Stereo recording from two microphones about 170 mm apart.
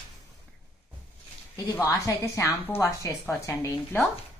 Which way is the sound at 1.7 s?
15° left (ahead or behind).